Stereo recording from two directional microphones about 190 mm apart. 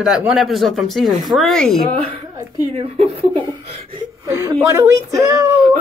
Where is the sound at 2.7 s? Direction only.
35° right (ahead or behind).